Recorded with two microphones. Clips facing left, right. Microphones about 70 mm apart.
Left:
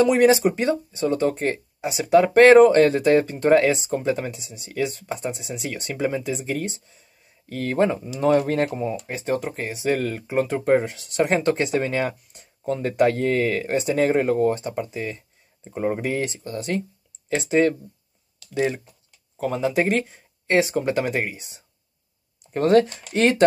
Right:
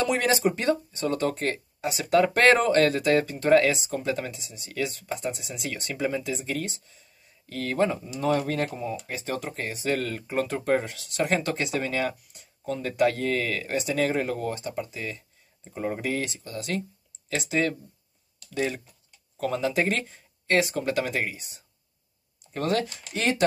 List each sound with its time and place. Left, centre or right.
0.0 s speech: centre
22.6 s speech: left
23.1 s speech: left